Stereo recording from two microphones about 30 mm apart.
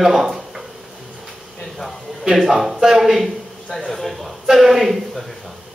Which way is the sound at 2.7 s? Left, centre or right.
Centre.